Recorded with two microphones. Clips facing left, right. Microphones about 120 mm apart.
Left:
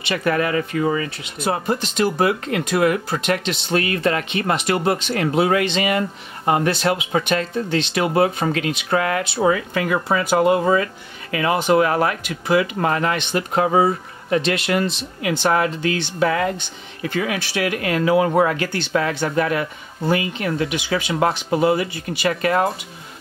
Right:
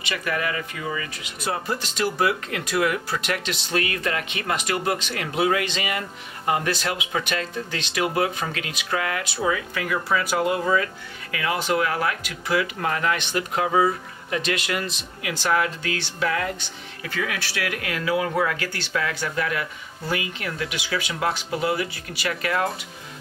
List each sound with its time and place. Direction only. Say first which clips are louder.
0.1 s speech: left 7 dB; 35° left (ahead or behind)
1.8 s speech: left 5 dB; 25° left (ahead or behind)